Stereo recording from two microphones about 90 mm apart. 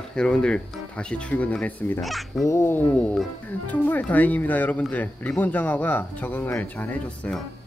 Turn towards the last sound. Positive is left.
turn(degrees=15)  # may be behind; listen again after turning